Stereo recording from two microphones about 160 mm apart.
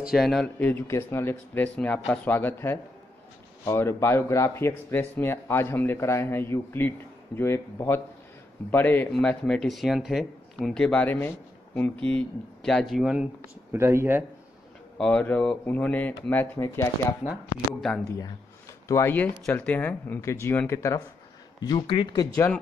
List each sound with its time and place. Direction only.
0.0 s speech: centre (ahead or behind)
13.7 s speech: 15° right (ahead or behind)
15.0 s speech: 5° left (ahead or behind)
17.3 s speech: centre (ahead or behind)
18.9 s speech: 15° left (ahead or behind)